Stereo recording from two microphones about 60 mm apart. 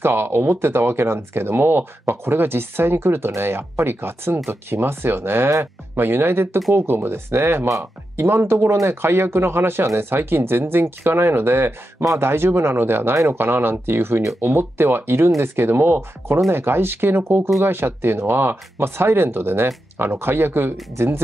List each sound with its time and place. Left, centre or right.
0.0 s speech: right
13.1 s speech: right
13.4 s speech: right